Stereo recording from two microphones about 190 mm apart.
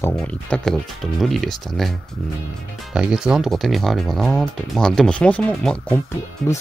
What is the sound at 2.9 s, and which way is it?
Speech, 5° right (ahead or behind).